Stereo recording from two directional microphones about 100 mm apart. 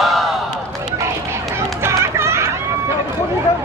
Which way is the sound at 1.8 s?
25° right (ahead or behind).